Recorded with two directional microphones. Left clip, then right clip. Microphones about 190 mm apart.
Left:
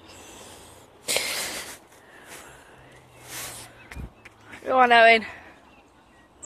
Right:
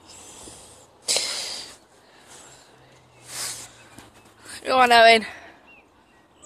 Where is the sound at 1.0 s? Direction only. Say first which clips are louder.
Right 1 dB; 10° left (ahead or behind).